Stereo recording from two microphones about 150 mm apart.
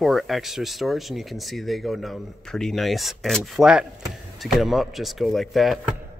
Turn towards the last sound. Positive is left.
turn(degrees=0)  # may be behind; listen again after turning